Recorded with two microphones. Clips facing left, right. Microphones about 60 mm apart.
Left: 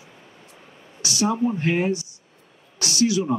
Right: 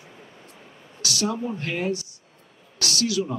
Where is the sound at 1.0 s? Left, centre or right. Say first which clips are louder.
Left 3 dB; left.